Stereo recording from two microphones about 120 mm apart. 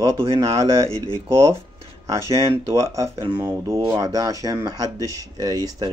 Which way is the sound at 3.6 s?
25° right (ahead or behind).